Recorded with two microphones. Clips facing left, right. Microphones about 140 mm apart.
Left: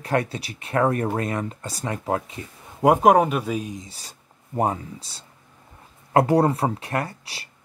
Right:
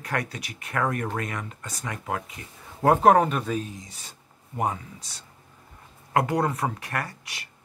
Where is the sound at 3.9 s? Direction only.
35° left (ahead or behind).